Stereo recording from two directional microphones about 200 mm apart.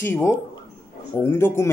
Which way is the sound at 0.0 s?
10° left (ahead or behind).